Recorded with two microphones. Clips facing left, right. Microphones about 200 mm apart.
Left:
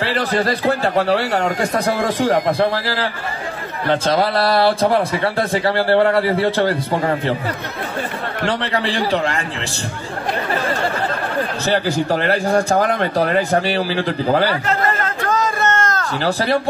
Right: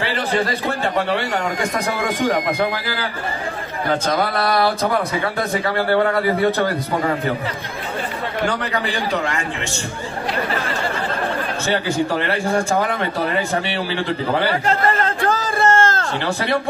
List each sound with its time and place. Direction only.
0.1 s a man's voice: 35° left (ahead or behind)
8.5 s a man's voice: 30° left (ahead or behind)
11.6 s a man's voice: 35° left (ahead or behind)
15.2 s a sound: 30° right (ahead or behind)
16.3 s a man's voice: 35° left (ahead or behind)